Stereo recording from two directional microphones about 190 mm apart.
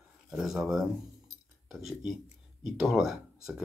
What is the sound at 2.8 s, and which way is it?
Speech, centre (ahead or behind).